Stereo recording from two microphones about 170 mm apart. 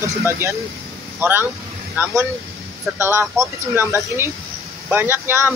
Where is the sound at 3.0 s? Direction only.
15° right (ahead or behind).